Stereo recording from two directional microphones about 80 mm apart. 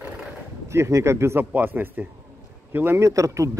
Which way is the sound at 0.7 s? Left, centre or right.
Right.